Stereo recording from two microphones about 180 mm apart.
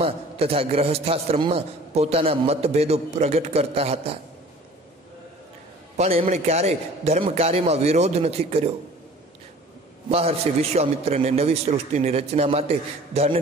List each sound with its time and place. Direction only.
0.0 s a man's voice: 35° right (ahead or behind)
5.9 s a man's voice: 35° right (ahead or behind)
10.0 s a man's voice: 35° right (ahead or behind)